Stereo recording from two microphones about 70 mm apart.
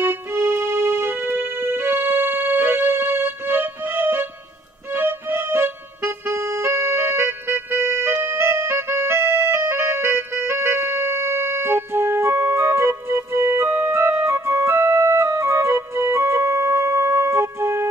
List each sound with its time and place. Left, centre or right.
0.0 s music: right